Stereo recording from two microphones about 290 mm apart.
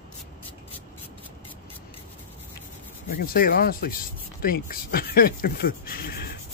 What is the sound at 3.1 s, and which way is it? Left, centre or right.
Speech, left.